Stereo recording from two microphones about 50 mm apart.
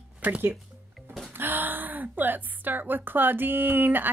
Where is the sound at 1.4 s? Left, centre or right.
Right.